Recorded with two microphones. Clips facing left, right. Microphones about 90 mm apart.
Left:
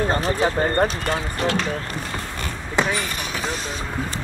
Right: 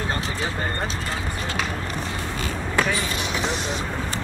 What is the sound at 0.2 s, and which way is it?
Speech, 45° left (ahead or behind).